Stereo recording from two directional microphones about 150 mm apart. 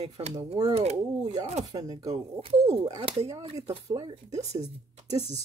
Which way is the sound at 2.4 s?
40° right (ahead or behind).